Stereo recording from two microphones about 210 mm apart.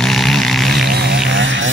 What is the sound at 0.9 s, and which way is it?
Buzz, 50° right (ahead or behind).